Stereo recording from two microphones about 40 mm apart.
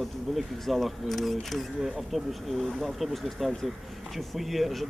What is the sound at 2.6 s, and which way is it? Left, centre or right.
Speech, centre.